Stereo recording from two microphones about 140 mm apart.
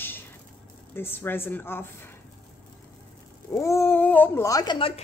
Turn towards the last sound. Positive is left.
turn(degrees=30)  # may be behind; listen again after turning